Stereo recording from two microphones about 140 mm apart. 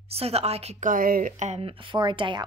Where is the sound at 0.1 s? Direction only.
45° right (ahead or behind); by 1.6 s 65° right (ahead or behind).